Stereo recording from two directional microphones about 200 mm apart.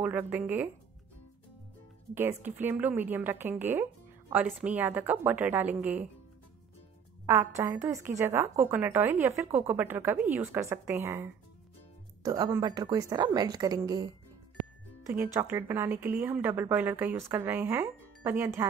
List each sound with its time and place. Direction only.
0.0 s a woman's voice: 10° right (ahead or behind)
2.1 s a woman's voice: 10° right (ahead or behind)
7.2 s a woman's voice: 15° right (ahead or behind)
15.3 s a woman's voice: 10° right (ahead or behind)